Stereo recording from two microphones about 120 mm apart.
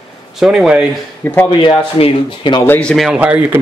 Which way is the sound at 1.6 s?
50° left (ahead or behind).